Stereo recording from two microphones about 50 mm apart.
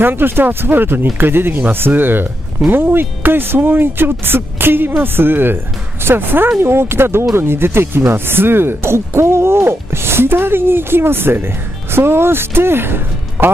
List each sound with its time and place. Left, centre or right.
0.0 s speech: right